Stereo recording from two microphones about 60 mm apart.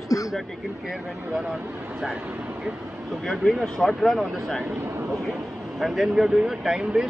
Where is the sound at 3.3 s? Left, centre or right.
Centre.